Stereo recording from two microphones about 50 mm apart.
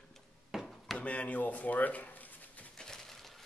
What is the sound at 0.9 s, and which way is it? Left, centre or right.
Speech, left.